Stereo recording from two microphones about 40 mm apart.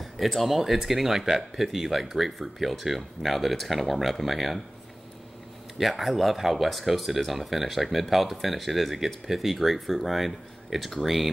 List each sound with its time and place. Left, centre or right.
0.0 s speech: centre
5.8 s speech: centre